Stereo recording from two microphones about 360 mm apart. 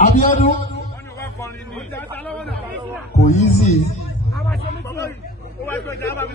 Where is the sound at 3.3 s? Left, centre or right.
Centre.